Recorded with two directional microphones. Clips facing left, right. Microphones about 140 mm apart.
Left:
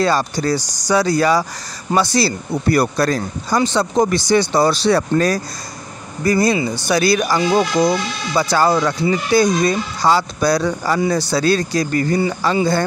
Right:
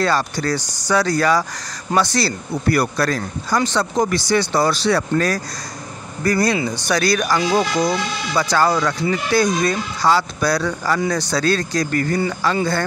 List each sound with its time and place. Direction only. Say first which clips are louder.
0.0 s speech: left 2 dB; 15° left (ahead or behind)
2.7 s speech: left 3 dB; 25° left (ahead or behind)
6.2 s speech: left 2 dB; 10° left (ahead or behind)
11.0 s speech: left 3 dB; 5° left (ahead or behind)